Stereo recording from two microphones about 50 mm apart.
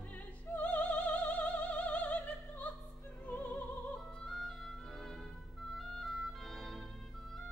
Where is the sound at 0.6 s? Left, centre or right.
Left.